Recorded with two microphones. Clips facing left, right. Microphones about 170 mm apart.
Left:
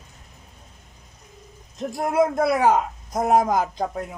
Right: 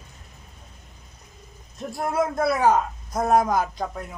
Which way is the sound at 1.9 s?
20° left (ahead or behind).